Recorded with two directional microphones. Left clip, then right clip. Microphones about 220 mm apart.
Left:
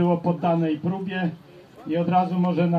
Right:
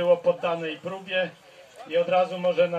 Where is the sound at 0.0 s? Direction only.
50° left (ahead or behind).